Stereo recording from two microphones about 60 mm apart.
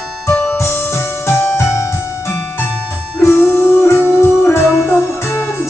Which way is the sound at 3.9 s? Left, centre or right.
Left.